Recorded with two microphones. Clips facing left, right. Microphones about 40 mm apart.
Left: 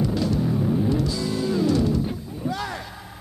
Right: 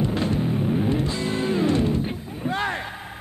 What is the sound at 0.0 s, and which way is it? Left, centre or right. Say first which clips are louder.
Music: even; right.